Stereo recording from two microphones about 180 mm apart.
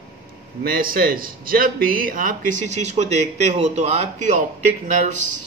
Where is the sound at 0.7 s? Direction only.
55° right (ahead or behind).